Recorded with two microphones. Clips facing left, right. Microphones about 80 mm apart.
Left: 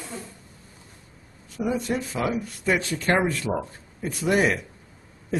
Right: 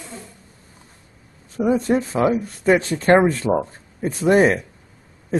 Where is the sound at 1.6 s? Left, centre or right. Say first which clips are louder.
Right 8 dB; right.